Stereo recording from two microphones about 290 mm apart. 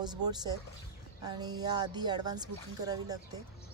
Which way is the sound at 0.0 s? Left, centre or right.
Centre.